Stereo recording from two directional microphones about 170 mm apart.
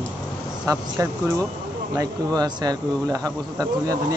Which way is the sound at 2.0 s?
20° right (ahead or behind).